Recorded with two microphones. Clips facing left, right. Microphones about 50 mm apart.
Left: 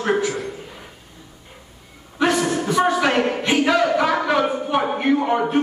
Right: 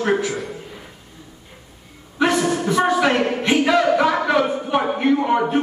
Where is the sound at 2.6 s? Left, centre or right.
Centre.